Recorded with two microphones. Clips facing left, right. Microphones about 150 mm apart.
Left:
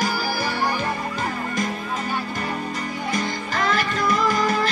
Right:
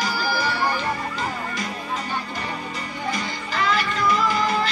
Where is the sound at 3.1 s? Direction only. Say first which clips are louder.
Left 2 dB; 45° left (ahead or behind).